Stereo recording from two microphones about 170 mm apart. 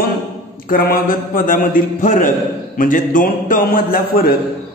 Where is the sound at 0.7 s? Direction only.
60° left (ahead or behind).